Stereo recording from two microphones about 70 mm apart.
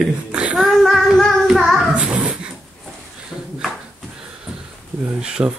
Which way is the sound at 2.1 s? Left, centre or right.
Centre.